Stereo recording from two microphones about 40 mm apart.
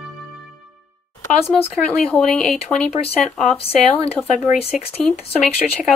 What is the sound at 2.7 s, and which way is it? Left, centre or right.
Speech, left.